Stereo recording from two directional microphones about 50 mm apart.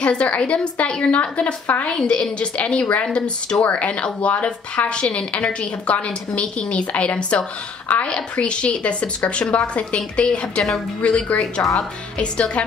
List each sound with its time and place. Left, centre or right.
0.0 s speech: left
1.9 s speech: centre